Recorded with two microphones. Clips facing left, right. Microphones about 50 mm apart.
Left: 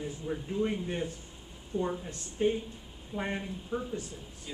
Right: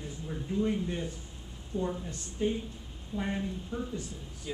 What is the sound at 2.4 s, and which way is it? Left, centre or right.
Speech, left.